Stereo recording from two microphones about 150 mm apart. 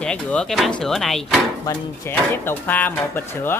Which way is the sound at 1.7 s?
15° left (ahead or behind).